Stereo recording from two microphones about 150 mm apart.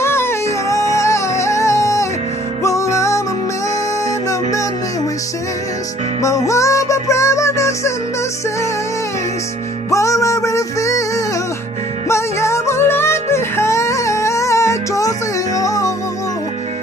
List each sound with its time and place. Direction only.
0.0 s music: 15° left (ahead or behind)
6.2 s music: 20° left (ahead or behind)
9.8 s music: 20° left (ahead or behind)
12.1 s music: 20° left (ahead or behind)